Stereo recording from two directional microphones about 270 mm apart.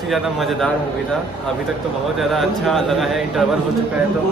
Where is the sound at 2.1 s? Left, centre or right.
Centre.